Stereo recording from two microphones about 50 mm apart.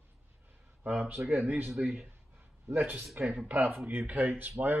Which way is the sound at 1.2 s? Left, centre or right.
Right.